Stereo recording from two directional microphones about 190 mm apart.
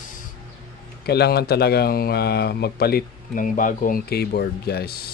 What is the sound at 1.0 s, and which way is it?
A man's voice, 60° left (ahead or behind).